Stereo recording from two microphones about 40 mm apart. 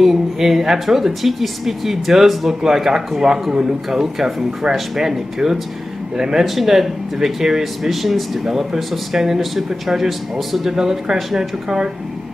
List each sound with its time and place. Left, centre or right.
0.0 s speech: centre
6.4 s speech: centre